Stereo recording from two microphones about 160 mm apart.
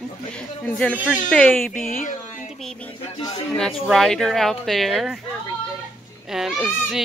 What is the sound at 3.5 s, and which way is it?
Speech, 5° left (ahead or behind).